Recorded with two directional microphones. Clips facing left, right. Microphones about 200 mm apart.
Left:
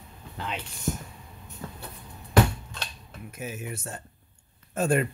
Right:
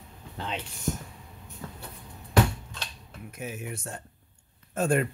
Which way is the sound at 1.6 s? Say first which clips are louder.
Left 2 dB; 40° left (ahead or behind).